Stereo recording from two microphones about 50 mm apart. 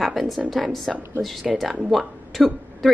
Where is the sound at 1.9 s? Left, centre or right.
Centre.